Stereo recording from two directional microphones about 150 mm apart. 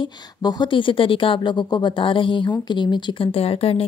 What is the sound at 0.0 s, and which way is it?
Speech, 30° left (ahead or behind).